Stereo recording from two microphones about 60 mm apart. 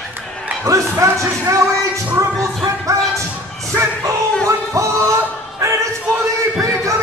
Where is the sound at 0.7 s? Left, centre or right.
Right.